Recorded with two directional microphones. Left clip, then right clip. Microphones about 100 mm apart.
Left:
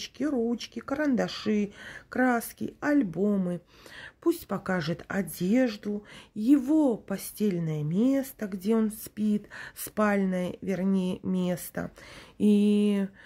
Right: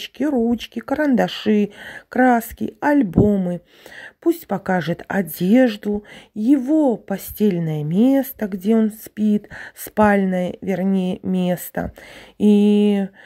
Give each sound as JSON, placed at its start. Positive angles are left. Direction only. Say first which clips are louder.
{"t": 0.0, "sound": "speech", "louder": "right 9 dB", "side_deg": -60}
{"t": 3.3, "sound": "speech", "louder": "right 9 dB", "side_deg": -35}
{"t": 6.3, "sound": "speech", "louder": "right 7 dB", "side_deg": -30}
{"t": 7.1, "sound": "speech", "louder": "right 10 dB", "side_deg": -55}
{"t": 9.5, "sound": "a sound", "louder": "right 7 dB", "side_deg": -30}
{"t": 9.9, "sound": "speech", "louder": "right 10 dB", "side_deg": -50}
{"t": 12.4, "sound": "a sound", "louder": "right 9 dB", "side_deg": -40}